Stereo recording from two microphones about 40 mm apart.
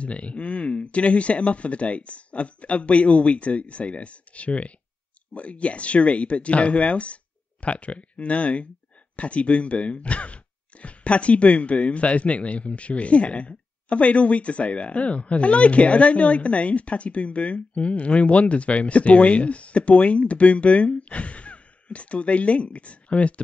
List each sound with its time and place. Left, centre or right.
0.0 s speech: left